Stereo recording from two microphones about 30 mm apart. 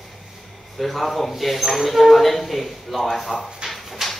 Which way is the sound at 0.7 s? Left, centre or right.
Centre.